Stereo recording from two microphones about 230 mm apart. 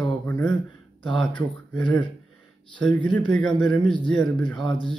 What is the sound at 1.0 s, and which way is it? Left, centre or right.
Speech, left.